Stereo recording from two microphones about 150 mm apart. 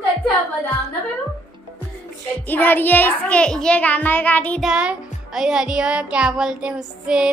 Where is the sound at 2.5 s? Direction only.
10° left (ahead or behind).